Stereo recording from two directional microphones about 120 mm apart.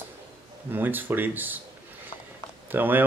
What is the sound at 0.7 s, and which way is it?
Speech, 15° right (ahead or behind).